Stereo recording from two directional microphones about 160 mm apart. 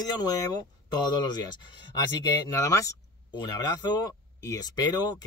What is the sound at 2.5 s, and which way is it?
Speech, 20° left (ahead or behind).